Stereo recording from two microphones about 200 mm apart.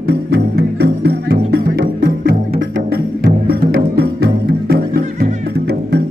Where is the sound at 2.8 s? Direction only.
45° right (ahead or behind).